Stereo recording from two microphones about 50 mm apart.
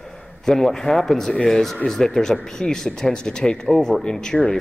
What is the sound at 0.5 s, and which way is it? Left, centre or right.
Speech, centre.